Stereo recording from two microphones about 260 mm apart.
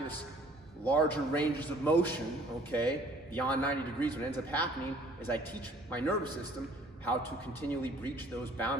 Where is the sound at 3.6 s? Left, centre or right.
Centre.